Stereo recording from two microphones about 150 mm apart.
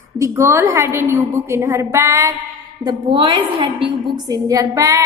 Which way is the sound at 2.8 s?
35° right (ahead or behind).